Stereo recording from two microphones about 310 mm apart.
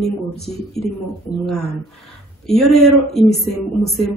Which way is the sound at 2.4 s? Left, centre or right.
Centre.